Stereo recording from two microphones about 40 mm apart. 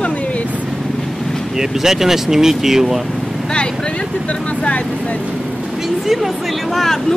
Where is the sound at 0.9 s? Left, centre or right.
Centre.